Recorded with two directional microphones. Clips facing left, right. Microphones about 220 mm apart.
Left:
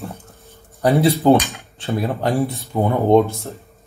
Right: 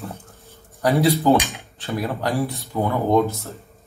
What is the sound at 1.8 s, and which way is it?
Speech, 25° left (ahead or behind).